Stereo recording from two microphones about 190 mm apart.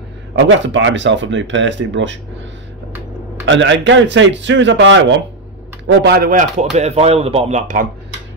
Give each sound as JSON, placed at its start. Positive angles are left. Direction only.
{"t": 0.5, "sound": "a man's voice", "side_deg": -75}
{"t": 3.4, "sound": "a man's voice", "side_deg": -75}
{"t": 5.9, "sound": "speech", "side_deg": -55}